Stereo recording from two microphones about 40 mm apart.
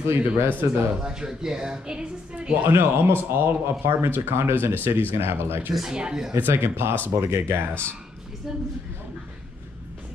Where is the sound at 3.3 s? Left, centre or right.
Right.